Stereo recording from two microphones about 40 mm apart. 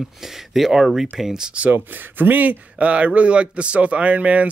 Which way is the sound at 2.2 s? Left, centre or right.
Right.